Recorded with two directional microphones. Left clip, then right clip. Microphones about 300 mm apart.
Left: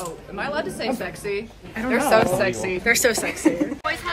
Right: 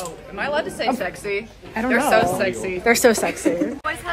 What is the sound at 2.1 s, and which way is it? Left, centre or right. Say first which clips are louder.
Speech: even; left.